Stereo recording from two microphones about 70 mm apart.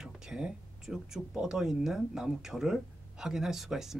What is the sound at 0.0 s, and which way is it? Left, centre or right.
Speech, centre.